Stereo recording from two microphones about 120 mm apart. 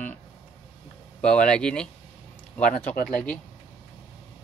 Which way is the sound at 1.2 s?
10° left (ahead or behind).